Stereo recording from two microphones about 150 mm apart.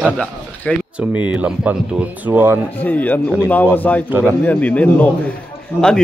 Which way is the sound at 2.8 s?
10° left (ahead or behind).